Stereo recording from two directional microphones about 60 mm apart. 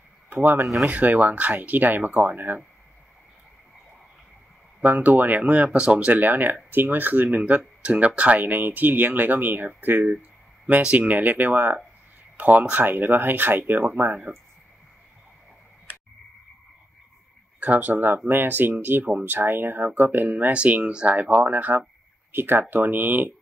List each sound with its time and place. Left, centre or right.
0.3 s speech: right
4.8 s speech: right
10.8 s speech: right
17.6 s speech: right
20.5 s speech: right